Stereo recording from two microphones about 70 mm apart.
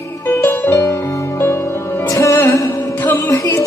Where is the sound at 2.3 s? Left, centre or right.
Left.